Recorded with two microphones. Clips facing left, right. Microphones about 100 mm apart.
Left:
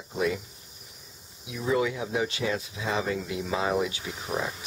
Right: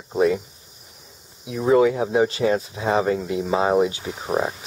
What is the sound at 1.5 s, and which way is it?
Speech, 50° right (ahead or behind).